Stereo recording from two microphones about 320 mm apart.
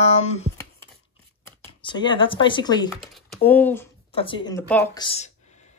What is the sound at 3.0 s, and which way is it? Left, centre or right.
Speech, centre.